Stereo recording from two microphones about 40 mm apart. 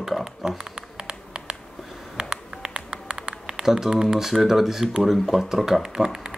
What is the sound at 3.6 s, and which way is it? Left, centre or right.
Speech, centre.